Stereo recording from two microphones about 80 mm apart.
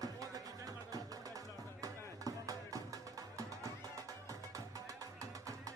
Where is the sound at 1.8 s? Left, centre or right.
Right.